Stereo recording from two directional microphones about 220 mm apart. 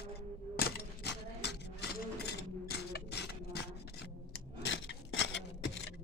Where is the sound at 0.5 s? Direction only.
45° left (ahead or behind).